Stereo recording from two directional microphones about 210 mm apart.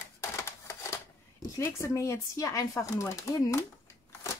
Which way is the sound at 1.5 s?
15° left (ahead or behind).